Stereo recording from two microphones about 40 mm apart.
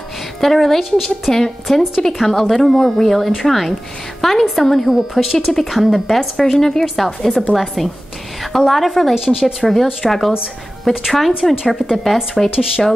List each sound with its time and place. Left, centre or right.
0.4 s speech: centre
1.3 s speech: centre
2.4 s speech: centre
9.1 s speech: centre
9.6 s speech: centre